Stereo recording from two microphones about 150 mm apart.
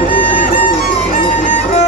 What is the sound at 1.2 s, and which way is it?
Music, 40° left (ahead or behind).